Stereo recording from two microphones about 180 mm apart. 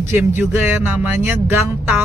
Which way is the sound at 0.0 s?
10° right (ahead or behind).